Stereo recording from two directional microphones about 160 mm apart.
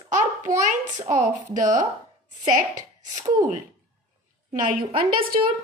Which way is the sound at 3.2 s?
25° right (ahead or behind).